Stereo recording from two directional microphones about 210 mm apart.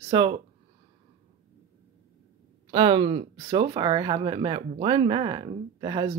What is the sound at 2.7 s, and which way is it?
Speech, 20° right (ahead or behind).